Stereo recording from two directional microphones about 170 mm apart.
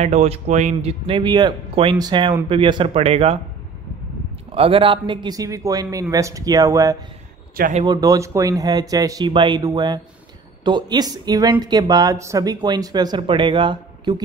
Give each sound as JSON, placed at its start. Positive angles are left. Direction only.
{"t": 0.0, "sound": "speech", "side_deg": -40}
{"t": 4.5, "sound": "speech", "side_deg": -35}